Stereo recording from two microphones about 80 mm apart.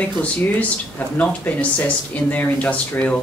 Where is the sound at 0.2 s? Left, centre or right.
Centre.